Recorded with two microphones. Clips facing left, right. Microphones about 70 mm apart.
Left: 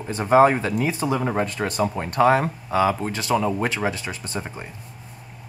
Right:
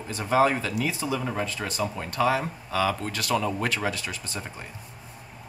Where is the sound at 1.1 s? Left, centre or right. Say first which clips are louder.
Left 6 dB; left.